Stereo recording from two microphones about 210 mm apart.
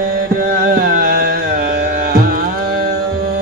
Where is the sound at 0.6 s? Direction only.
45° right (ahead or behind).